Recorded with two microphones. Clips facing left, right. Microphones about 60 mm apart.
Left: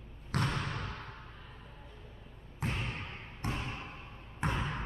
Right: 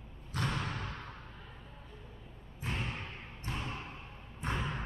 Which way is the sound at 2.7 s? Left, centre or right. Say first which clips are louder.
Right 3 dB; right.